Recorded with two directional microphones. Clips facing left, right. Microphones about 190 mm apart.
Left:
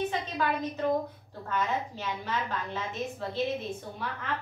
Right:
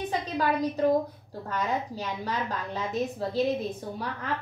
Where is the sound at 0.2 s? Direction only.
35° right (ahead or behind).